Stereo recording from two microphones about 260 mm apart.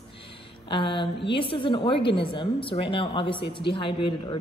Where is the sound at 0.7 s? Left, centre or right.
Centre.